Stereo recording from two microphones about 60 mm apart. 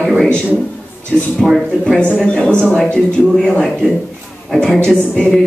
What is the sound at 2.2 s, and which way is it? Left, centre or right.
Speech, centre.